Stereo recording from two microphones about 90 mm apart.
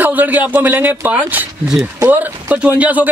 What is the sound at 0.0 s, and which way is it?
Speech, 20° right (ahead or behind).